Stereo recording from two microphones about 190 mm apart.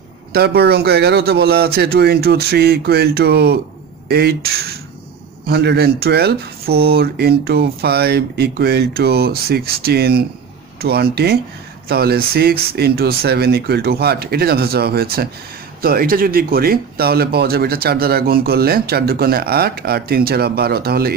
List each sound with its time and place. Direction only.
0.3 s speech: 55° right (ahead or behind)